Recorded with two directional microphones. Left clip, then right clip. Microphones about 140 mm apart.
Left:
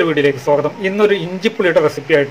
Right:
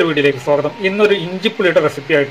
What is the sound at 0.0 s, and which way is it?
A man's voice, 10° left (ahead or behind).